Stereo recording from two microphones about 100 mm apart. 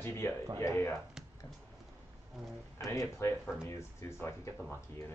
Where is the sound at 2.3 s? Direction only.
Centre (ahead or behind).